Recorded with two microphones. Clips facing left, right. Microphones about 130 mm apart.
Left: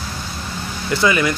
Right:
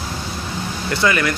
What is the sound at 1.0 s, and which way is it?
Speech, 20° left (ahead or behind).